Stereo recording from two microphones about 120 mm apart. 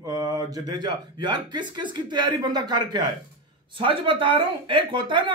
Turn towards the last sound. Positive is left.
turn(degrees=-45)  # may be behind; listen again after turning